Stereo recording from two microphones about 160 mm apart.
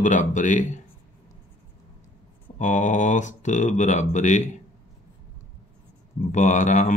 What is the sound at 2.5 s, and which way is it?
Speech, 50° left (ahead or behind).